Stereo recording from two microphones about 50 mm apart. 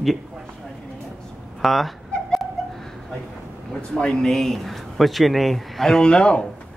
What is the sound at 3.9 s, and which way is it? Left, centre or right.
Speech, centre.